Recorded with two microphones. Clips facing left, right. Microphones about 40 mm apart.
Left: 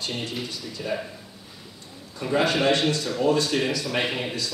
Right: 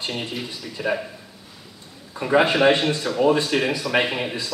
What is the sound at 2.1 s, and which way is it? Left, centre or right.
A man's voice, right.